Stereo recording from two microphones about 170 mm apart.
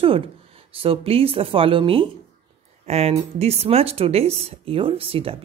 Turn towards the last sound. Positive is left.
turn(degrees=-35)  # may be behind; listen again after turning